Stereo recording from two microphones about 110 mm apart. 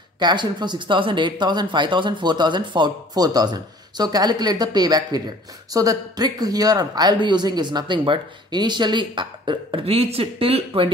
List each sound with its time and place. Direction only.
0.2 s speech: 45° right (ahead or behind)